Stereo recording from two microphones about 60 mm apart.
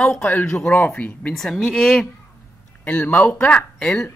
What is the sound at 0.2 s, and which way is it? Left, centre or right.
Speech, left.